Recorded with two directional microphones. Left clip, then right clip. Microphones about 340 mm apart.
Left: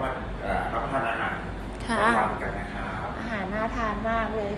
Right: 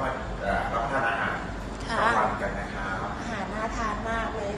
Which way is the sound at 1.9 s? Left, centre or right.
Left.